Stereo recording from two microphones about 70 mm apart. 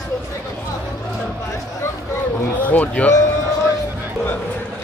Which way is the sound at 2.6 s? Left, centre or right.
Left.